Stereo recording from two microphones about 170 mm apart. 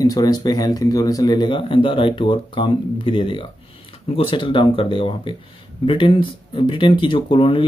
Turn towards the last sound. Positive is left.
turn(degrees=30)  # may be behind; listen again after turning